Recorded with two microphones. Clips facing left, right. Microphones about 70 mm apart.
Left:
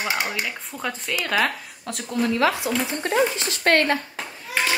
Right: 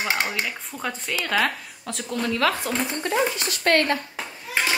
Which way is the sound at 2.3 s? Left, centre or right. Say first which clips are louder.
Left 1 dB; centre.